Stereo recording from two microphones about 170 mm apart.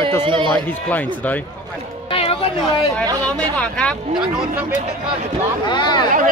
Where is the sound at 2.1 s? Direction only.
35° left (ahead or behind).